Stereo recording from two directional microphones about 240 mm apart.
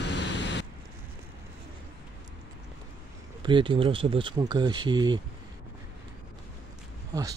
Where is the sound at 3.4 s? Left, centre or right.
Centre.